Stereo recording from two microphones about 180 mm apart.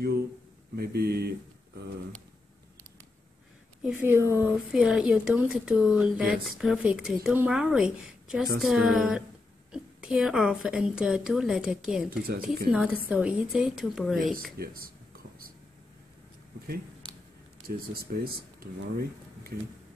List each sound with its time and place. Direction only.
0.7 s speech: 60° right (ahead or behind)
3.8 s a woman's voice: 10° right (ahead or behind)
14.6 s speech: 55° right (ahead or behind)
17.6 s speech: 55° right (ahead or behind)